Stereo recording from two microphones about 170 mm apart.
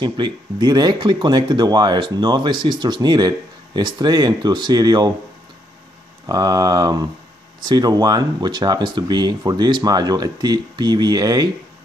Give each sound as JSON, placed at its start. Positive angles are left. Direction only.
{"t": 0.0, "sound": "speech", "side_deg": -25}
{"t": 6.2, "sound": "speech", "side_deg": -25}